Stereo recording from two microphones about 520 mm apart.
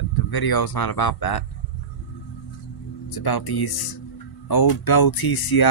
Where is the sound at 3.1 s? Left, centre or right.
Left.